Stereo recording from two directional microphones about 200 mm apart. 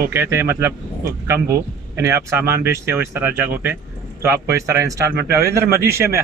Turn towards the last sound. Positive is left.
turn(degrees=-15)  # may be behind; listen again after turning